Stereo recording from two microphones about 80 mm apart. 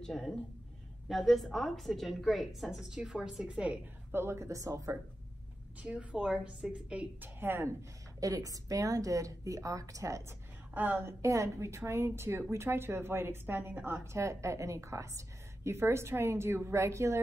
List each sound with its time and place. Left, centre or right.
0.0 s a woman's voice: centre
4.1 s a woman's voice: right
5.8 s a woman's voice: centre
7.3 s a woman's voice: right
8.2 s a woman's voice: right
10.7 s a woman's voice: right
11.2 s a woman's voice: right